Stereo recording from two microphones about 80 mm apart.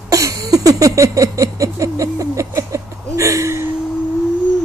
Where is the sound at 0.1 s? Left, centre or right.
Right.